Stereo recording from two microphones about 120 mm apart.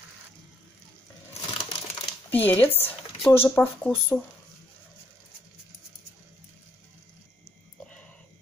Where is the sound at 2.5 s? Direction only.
15° left (ahead or behind).